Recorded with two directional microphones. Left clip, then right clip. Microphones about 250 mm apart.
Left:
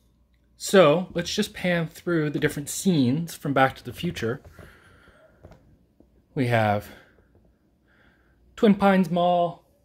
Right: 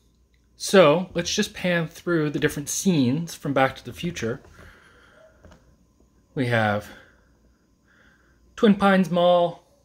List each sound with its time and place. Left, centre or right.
0.6 s speech: centre
6.3 s speech: centre
8.5 s speech: centre